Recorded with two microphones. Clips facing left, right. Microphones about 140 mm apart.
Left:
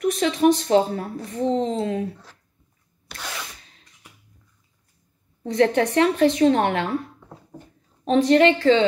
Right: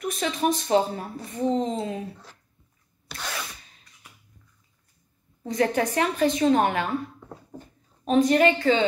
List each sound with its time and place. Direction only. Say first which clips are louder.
0.0 s a woman's voice: left 7 dB; 70° left (ahead or behind)
5.5 s a woman's voice: left 5 dB; 70° left (ahead or behind)
8.1 s a woman's voice: left 3 dB; 70° left (ahead or behind)